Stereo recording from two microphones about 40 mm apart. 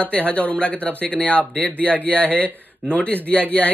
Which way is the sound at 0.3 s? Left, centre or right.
Left.